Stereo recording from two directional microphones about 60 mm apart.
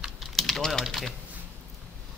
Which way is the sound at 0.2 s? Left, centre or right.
Centre.